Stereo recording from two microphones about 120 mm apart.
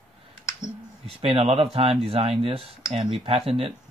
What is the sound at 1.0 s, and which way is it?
Speech, 50° right (ahead or behind).